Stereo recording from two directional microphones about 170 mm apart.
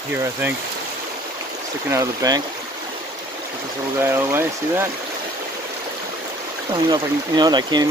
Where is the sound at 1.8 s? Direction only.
20° right (ahead or behind).